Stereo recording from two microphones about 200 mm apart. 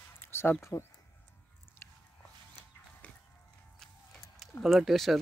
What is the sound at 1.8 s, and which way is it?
Biting, 10° left (ahead or behind).